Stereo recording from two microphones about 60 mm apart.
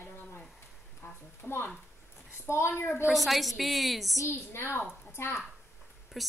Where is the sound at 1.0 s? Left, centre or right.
Left.